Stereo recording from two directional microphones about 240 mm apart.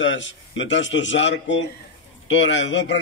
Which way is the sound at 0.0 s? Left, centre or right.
Left.